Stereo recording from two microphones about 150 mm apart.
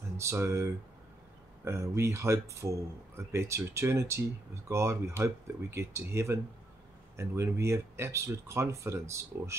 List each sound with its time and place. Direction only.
0.2 s speech: 20° right (ahead or behind)